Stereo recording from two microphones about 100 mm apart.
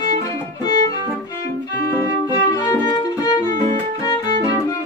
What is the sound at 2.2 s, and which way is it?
Music, 35° left (ahead or behind).